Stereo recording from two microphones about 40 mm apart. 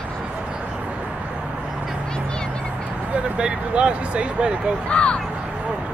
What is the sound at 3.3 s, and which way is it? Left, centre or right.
Vehicle, right.